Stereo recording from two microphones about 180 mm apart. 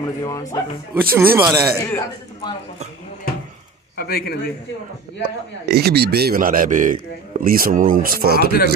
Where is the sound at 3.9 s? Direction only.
60° left (ahead or behind).